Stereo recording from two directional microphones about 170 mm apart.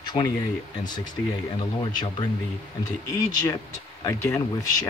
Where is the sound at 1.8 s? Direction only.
25° left (ahead or behind).